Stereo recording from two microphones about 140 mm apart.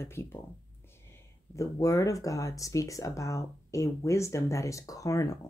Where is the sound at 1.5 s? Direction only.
20° left (ahead or behind).